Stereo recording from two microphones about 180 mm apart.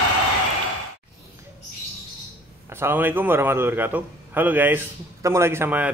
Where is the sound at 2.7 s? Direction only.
10° right (ahead or behind).